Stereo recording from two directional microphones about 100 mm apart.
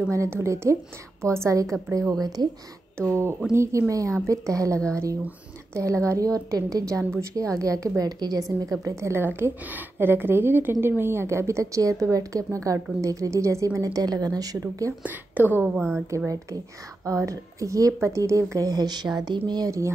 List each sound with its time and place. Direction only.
0.1 s a woman's voice: 30° right (ahead or behind)
3.1 s a woman's voice: 25° right (ahead or behind)
4.7 s a woman's voice: 10° left (ahead or behind)
5.8 s a woman's voice: 30° right (ahead or behind)
15.0 s speech: 20° right (ahead or behind)
16.1 s a woman's voice: 30° right (ahead or behind); by 19.7 s 45° right (ahead or behind)